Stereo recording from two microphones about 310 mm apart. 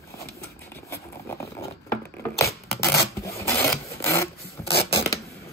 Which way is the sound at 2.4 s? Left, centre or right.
Centre.